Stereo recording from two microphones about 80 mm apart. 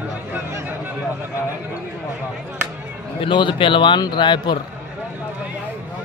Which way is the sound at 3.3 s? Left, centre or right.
Left.